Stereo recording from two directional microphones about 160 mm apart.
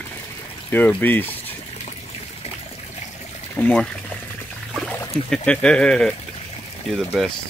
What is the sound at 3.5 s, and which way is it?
Speech, 10° left (ahead or behind).